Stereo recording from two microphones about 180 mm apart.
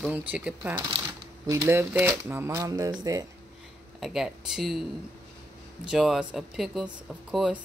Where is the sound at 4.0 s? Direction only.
Centre (ahead or behind).